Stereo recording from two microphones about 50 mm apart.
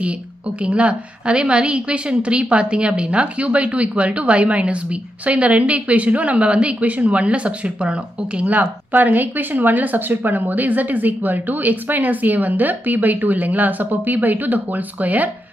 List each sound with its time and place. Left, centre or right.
0.6 s a woman's voice: right